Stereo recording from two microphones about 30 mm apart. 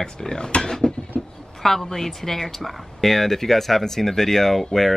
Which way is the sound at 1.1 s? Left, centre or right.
Left.